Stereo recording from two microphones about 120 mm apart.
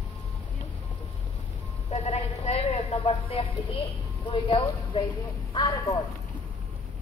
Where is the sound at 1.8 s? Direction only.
60° left (ahead or behind).